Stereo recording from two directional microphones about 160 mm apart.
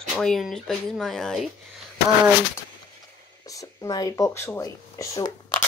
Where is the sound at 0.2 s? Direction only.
Centre (ahead or behind).